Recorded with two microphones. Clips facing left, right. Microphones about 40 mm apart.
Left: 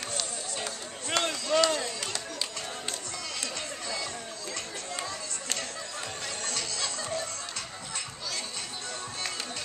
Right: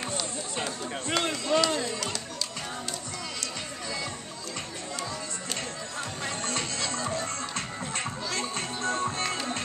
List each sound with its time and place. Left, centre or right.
1.1 s a sound: centre
6.2 s music: right
8.8 s music: right